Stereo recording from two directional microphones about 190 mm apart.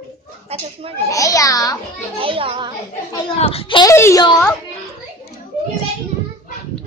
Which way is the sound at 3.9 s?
15° left (ahead or behind).